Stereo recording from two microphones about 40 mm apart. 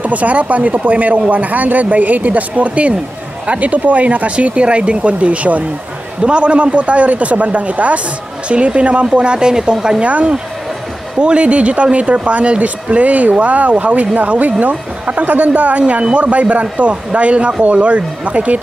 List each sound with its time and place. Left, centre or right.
0.0 s speech: right; by 10.0 s centre
10.0 s speech: right